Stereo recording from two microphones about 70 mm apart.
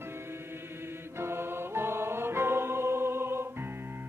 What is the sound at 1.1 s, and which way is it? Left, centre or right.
Music, right.